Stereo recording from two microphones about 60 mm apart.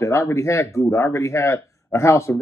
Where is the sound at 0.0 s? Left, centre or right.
Left.